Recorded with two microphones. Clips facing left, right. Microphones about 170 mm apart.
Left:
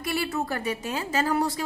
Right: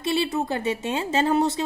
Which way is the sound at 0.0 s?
20° right (ahead or behind).